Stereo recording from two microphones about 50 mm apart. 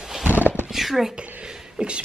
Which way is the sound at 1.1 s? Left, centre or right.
Right.